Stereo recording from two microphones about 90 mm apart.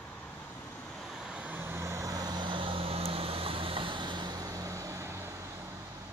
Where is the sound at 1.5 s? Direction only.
25° right (ahead or behind).